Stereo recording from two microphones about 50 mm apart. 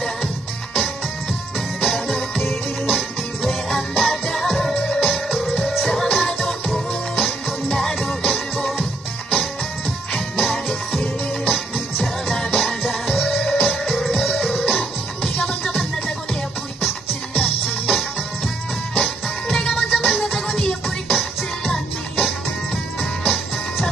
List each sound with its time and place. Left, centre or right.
1.8 s music: centre
5.0 s music: centre
17.4 s music: centre